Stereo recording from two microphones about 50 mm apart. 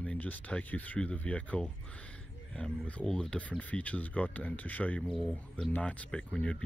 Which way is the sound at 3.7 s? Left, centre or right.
Left.